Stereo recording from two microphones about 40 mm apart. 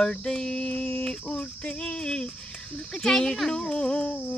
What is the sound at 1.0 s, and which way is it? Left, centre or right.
Cricket, centre.